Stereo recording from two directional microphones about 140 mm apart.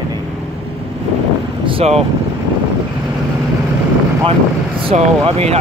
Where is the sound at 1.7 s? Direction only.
45° right (ahead or behind).